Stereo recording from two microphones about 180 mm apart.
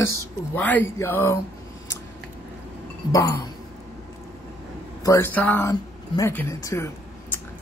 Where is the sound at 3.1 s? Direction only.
20° left (ahead or behind).